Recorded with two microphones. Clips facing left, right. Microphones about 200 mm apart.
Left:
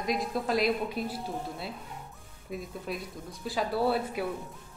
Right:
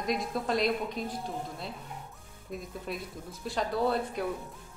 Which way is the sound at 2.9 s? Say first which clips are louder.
Even; centre (ahead or behind).